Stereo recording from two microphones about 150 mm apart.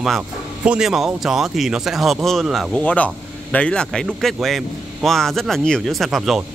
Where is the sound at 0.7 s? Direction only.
5° right (ahead or behind).